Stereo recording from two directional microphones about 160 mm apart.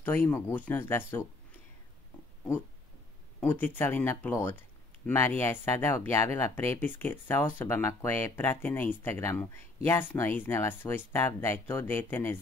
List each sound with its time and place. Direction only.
0.0 s speech: 10° left (ahead or behind)
3.3 s speech: 10° left (ahead or behind)